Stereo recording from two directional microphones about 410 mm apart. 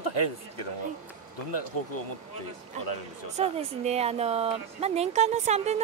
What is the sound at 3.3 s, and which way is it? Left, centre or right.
A woman's voice, centre.